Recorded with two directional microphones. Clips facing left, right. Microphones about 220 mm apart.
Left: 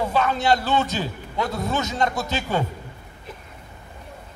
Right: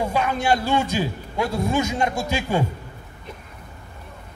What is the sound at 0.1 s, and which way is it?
A man's voice, 10° right (ahead or behind).